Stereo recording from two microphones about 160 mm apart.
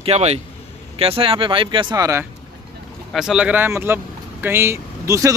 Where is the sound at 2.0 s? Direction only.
15° right (ahead or behind).